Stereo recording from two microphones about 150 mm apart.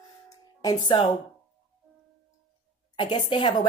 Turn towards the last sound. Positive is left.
turn(degrees=30)  # may be behind; listen again after turning